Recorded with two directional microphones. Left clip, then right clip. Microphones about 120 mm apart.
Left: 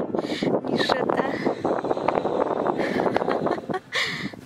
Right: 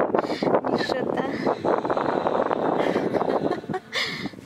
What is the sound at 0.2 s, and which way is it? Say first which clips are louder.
Speech: right 2 dB; centre (ahead or behind).